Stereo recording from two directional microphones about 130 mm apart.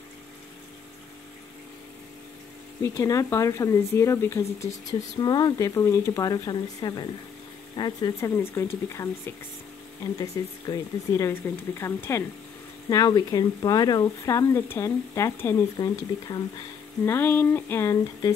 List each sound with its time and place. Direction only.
2.8 s speech: 25° left (ahead or behind)
5.2 s speech: 30° left (ahead or behind)
8.2 s speech: 20° left (ahead or behind)
17.0 s a sound: 15° left (ahead or behind)